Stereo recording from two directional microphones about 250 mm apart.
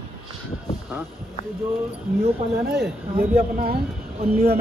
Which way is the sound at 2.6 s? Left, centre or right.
Right.